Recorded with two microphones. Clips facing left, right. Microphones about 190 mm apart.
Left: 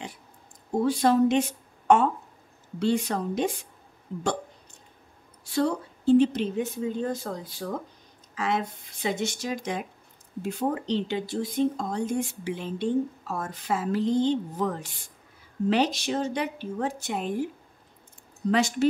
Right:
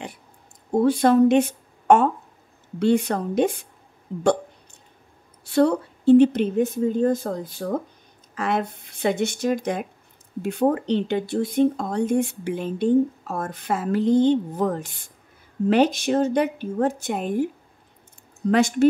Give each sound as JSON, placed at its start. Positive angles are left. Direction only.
{"t": 0.7, "sound": "speech", "side_deg": -55}
{"t": 5.5, "sound": "speech", "side_deg": -60}
{"t": 18.5, "sound": "speech", "side_deg": -55}